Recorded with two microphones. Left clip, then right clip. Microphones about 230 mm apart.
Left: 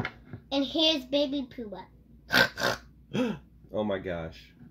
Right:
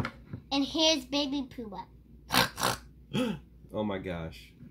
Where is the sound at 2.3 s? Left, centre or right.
Centre.